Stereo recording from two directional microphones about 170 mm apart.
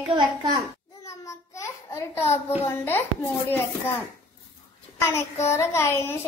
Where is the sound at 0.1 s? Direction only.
25° right (ahead or behind).